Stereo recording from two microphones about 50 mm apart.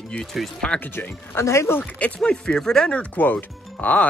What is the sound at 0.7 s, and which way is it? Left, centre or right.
Speech, left.